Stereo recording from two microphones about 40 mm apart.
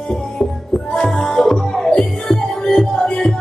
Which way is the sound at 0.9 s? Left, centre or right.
Centre.